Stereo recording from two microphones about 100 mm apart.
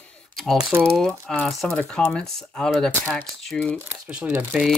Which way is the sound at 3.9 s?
10° right (ahead or behind).